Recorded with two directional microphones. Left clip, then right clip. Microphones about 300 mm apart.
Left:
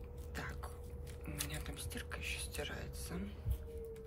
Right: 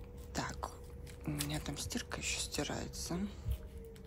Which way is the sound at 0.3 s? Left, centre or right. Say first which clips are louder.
Right 6 dB; centre.